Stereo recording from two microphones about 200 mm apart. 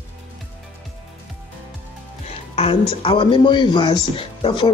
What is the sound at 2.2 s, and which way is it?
Speech, 30° left (ahead or behind).